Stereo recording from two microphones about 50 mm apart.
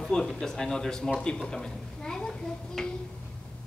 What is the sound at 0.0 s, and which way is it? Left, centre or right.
A woman's voice, centre.